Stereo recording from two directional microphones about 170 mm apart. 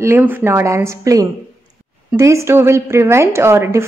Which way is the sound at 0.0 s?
15° right (ahead or behind).